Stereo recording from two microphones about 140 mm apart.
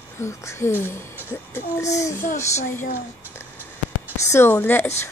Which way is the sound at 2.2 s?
60° left (ahead or behind).